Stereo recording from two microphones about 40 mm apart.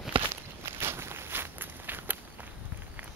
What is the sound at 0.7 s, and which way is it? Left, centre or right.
Walk, right.